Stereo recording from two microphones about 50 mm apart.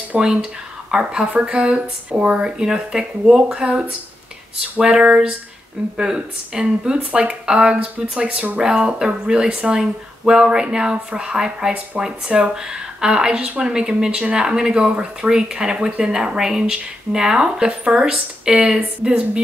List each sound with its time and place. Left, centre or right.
0.2 s speech: centre
2.4 s speech: centre
8.3 s speech: right
8.5 s speech: centre